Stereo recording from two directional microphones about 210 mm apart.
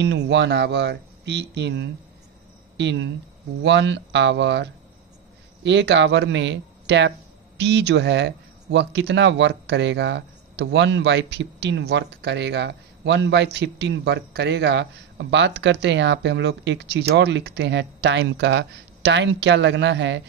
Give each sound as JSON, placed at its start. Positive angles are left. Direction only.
{"t": 0.0, "sound": "speech", "side_deg": -55}